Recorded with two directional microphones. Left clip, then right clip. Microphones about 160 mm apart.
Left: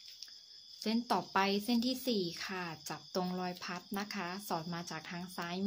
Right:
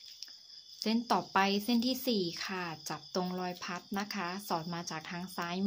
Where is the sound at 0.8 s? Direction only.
15° right (ahead or behind).